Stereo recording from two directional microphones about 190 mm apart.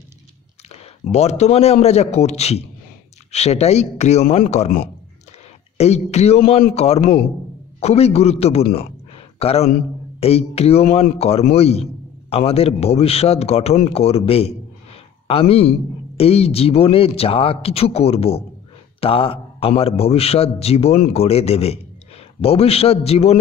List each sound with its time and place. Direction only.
0.7 s a man's voice: 35° left (ahead or behind)
5.8 s a man's voice: 35° left (ahead or behind)
8.7 s a sound: 30° left (ahead or behind)
10.2 s a man's voice: 30° left (ahead or behind)